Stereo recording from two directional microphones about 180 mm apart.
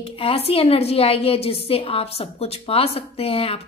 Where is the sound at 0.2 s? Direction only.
30° left (ahead or behind).